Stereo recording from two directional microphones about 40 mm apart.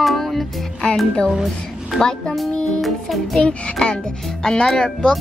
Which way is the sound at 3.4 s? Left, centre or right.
Left.